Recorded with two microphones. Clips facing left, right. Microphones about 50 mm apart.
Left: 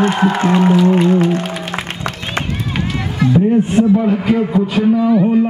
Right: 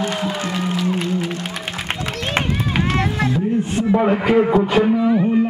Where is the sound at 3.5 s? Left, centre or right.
Left.